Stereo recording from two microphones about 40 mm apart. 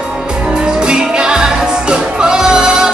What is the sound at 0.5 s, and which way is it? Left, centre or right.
Music, right.